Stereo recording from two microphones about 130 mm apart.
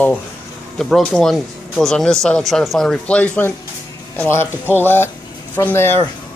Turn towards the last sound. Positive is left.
turn(degrees=20)  # may be behind; listen again after turning